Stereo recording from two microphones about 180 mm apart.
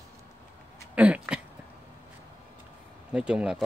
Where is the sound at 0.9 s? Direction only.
10° right (ahead or behind).